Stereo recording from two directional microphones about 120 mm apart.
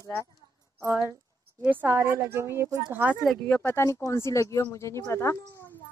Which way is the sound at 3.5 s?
15° left (ahead or behind).